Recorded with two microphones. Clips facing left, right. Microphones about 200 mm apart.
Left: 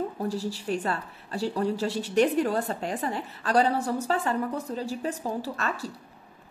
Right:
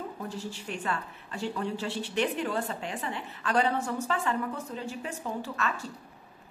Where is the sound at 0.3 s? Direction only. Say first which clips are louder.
Left 7 dB; 35° left (ahead or behind).